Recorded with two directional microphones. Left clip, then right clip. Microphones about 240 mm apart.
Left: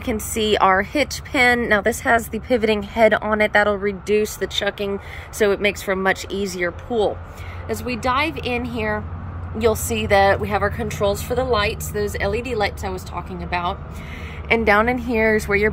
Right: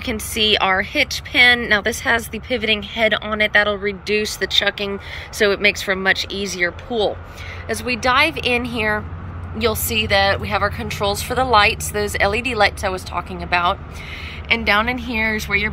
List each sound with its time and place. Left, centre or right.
0.0 s a woman's voice: centre
14.5 s a woman's voice: centre